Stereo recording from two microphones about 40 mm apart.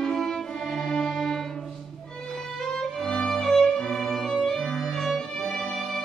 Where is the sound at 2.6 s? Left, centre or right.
Centre.